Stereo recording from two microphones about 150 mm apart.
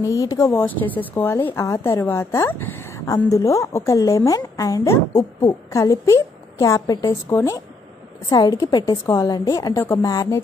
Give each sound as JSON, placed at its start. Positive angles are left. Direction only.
{"t": 0.0, "sound": "a woman's voice", "side_deg": 20}
{"t": 0.7, "sound": "a woman's voice", "side_deg": 10}